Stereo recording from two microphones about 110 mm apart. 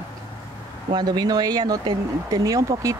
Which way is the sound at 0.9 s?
35° right (ahead or behind).